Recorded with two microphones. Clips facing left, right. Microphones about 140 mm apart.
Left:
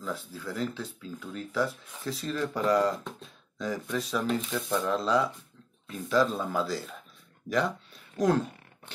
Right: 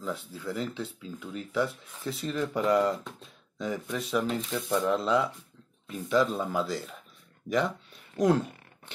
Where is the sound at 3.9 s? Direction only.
25° right (ahead or behind).